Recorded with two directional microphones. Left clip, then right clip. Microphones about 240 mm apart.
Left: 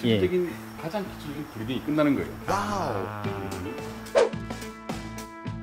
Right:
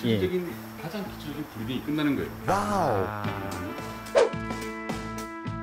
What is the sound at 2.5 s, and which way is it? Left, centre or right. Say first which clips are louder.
Speech: right 3 dB; centre.